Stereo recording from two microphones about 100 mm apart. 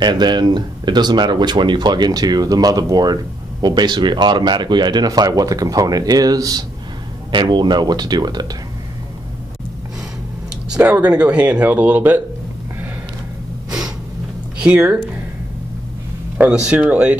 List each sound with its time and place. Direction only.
0.0 s speech: 50° right (ahead or behind)
7.2 s speech: 50° right (ahead or behind)
10.7 s speech: 10° right (ahead or behind)
14.6 s speech: 15° right (ahead or behind)
16.3 s speech: 10° right (ahead or behind)